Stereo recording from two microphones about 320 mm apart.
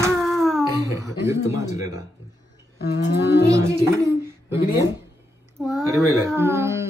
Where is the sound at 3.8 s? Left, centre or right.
Centre.